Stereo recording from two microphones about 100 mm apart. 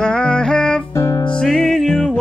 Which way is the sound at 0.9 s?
30° left (ahead or behind).